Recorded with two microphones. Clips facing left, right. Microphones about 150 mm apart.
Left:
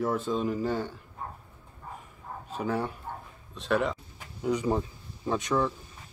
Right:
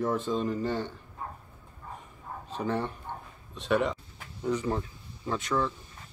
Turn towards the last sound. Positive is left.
turn(degrees=15)  # may be behind; listen again after turning